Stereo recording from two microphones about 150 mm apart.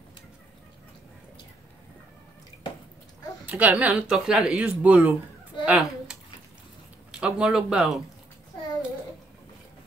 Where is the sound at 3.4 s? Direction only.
10° right (ahead or behind).